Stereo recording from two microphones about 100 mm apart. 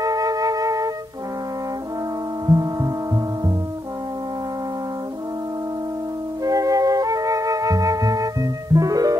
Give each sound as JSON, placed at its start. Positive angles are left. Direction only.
{"t": 0.0, "sound": "music", "side_deg": -35}
{"t": 2.4, "sound": "music", "side_deg": -35}
{"t": 6.4, "sound": "music", "side_deg": -35}